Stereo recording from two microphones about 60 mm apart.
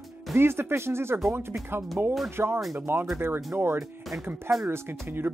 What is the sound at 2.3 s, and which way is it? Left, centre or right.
Speech, right.